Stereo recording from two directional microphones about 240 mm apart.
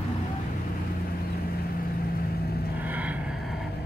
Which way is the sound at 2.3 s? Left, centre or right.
Left.